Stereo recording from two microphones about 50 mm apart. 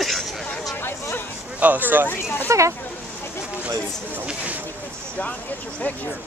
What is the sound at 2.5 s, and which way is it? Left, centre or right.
Speech, right.